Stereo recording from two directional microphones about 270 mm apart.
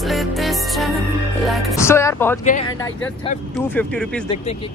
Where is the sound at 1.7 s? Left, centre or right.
Centre.